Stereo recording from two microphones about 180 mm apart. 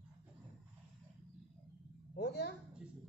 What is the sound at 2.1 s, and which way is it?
Speech, 70° left (ahead or behind).